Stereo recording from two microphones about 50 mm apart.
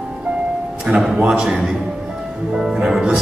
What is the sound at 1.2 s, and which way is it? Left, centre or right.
Speech, centre.